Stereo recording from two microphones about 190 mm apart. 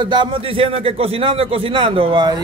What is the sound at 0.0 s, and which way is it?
A man's voice, 25° right (ahead or behind).